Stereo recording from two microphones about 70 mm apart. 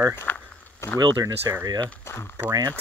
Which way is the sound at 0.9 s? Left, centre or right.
Right.